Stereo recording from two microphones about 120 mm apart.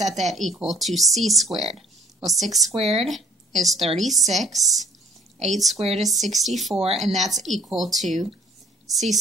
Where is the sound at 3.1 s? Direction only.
Centre (ahead or behind).